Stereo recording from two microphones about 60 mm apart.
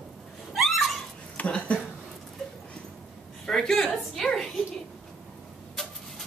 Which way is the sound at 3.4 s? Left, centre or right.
Centre.